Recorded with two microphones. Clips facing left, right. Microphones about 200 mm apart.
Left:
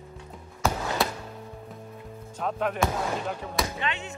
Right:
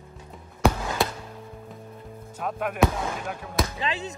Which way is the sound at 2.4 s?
5° right (ahead or behind).